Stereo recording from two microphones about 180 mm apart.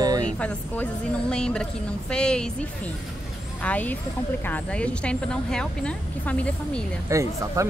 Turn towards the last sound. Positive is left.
turn(degrees=-15)  # may be behind; listen again after turning